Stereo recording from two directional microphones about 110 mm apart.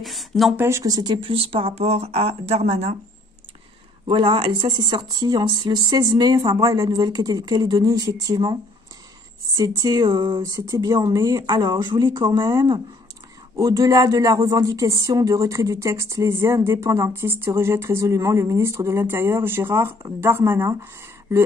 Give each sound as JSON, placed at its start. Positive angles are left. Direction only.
{"t": 0.0, "sound": "speech", "side_deg": 0}
{"t": 0.6, "sound": "speech", "side_deg": -25}
{"t": 1.3, "sound": "speech", "side_deg": -60}
{"t": 4.1, "sound": "speech", "side_deg": -50}
{"t": 9.6, "sound": "speech", "side_deg": -35}